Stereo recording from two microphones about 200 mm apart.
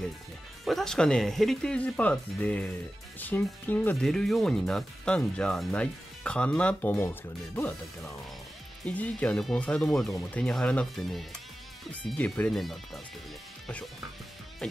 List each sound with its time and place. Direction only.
0.7 s speech: centre (ahead or behind)
8.8 s speech: 5° left (ahead or behind)
14.6 s speech: 5° left (ahead or behind)